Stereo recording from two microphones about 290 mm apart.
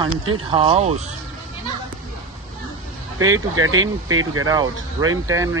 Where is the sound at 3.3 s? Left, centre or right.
Right.